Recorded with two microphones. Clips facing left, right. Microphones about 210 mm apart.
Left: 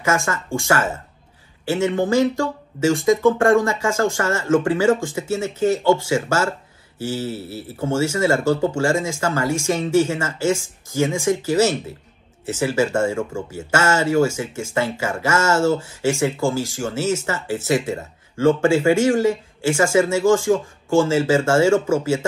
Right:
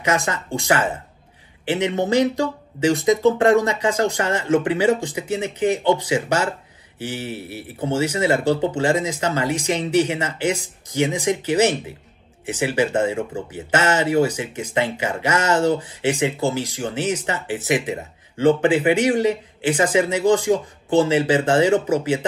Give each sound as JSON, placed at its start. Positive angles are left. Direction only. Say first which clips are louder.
{"t": 0.0, "sound": "speech", "louder": "even", "side_deg": -20}